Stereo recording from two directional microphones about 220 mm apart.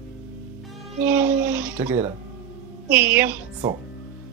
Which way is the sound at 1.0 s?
10° right (ahead or behind).